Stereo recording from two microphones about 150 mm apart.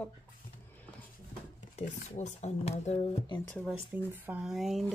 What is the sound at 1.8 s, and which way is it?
Speech, 50° left (ahead or behind).